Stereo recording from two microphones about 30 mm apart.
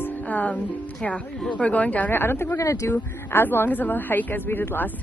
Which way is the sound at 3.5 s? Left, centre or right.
Left.